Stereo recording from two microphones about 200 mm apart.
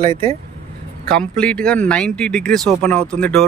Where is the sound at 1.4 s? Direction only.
5° left (ahead or behind).